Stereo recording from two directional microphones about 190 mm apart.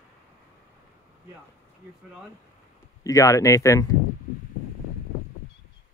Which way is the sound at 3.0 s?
15° left (ahead or behind).